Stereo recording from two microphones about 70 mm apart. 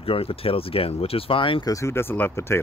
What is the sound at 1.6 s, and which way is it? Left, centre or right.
Speech, left.